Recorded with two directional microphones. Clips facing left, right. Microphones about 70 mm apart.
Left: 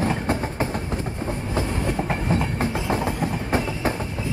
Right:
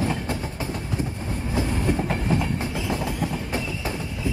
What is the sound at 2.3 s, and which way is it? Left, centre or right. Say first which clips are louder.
Train: left 3 dB; left.